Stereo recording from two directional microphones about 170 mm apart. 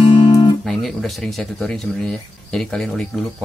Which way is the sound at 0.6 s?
Centre (ahead or behind).